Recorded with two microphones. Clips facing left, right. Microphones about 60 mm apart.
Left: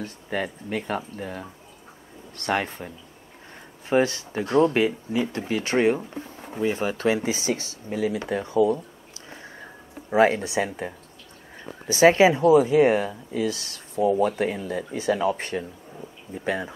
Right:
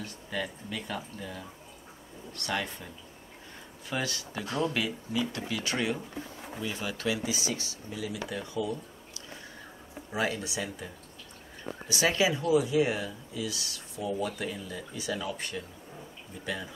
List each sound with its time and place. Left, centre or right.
0.0 s speech: left
3.9 s speech: left
6.6 s speech: left
10.1 s speech: left
11.9 s speech: left